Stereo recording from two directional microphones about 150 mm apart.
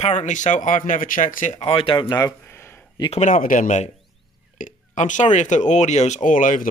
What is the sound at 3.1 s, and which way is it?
Speech, 50° left (ahead or behind).